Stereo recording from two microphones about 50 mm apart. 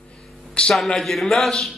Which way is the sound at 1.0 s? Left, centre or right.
Centre.